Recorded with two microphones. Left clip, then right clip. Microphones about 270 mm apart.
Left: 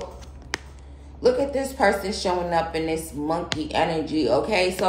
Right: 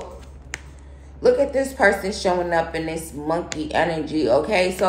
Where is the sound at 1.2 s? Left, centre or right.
Centre.